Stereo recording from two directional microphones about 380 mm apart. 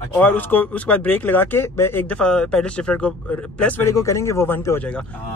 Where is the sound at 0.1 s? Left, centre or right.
Centre.